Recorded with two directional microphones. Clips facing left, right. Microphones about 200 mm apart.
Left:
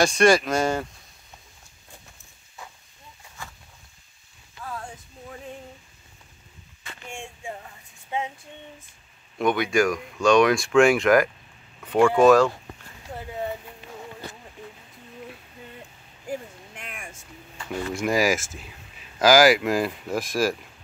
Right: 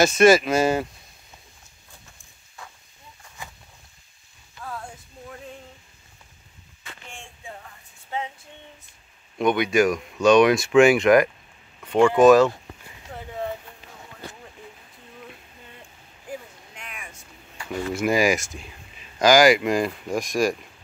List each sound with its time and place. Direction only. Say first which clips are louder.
0.0 s speech: right 3 dB; 5° right (ahead or behind)
9.4 s speech: right 2 dB; centre (ahead or behind)
11.8 s a sound: right 1 dB; 10° right (ahead or behind)
12.1 s speech: right 2 dB; centre (ahead or behind)
16.7 s a sound: even; 50° left (ahead or behind)
17.6 s speech: right 2 dB; 5° right (ahead or behind)